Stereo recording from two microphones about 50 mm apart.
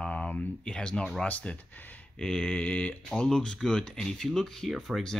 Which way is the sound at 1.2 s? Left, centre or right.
Left.